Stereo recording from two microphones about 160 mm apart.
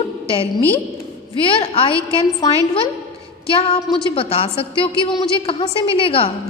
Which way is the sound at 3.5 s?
30° left (ahead or behind).